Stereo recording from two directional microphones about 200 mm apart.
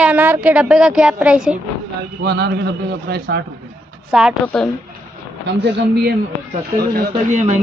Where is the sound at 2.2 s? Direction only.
55° right (ahead or behind).